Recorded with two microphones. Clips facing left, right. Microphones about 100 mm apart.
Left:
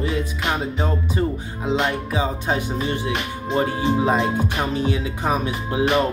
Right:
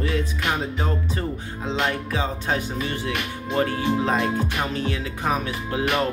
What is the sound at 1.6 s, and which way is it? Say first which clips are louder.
Speech: left 3 dB; 15° left (ahead or behind).